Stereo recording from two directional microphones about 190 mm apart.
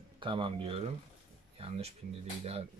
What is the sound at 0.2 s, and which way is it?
Speech, 25° right (ahead or behind).